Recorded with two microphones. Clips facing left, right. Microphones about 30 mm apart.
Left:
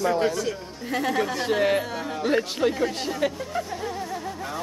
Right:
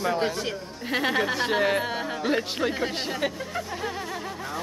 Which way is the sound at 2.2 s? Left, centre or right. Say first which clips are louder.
Left 4 dB; centre.